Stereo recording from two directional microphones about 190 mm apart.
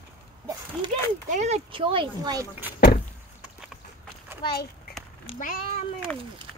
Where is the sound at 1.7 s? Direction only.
25° right (ahead or behind).